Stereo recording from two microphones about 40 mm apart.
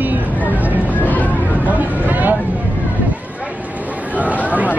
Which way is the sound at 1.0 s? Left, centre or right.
Left.